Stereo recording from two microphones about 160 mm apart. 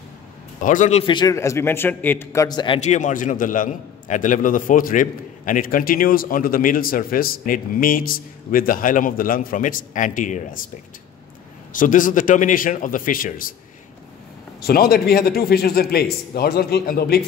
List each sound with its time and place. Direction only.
0.6 s a man's voice: 55° left (ahead or behind)
1.0 s speech: 30° left (ahead or behind)
1.3 s a man's voice: 20° left (ahead or behind)
2.8 s a man's voice: 50° left (ahead or behind)
11.7 s a man's voice: 55° left (ahead or behind)
14.6 s a man's voice: 75° left (ahead or behind)